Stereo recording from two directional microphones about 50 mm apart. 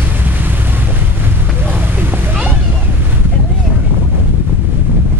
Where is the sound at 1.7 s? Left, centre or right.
Right.